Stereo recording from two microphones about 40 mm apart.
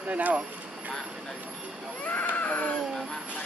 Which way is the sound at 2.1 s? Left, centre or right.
Left.